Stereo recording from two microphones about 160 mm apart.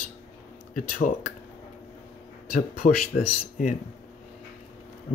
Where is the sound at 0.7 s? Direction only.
55° left (ahead or behind).